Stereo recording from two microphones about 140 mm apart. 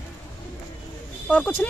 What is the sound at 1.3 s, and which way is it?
Speech, 10° left (ahead or behind).